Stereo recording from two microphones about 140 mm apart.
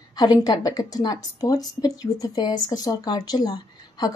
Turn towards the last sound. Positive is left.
turn(degrees=30)  # may be behind; listen again after turning